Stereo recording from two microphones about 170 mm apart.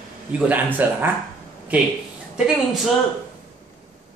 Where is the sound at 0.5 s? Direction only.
10° right (ahead or behind).